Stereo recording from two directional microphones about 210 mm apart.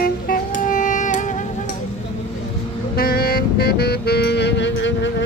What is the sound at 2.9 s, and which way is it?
Music, 45° left (ahead or behind).